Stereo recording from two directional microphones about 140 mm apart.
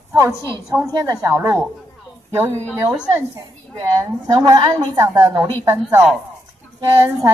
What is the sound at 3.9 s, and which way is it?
A woman's voice, 25° right (ahead or behind).